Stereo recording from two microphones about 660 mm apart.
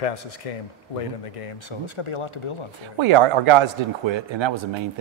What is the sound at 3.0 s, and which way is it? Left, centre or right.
A man's voice, right.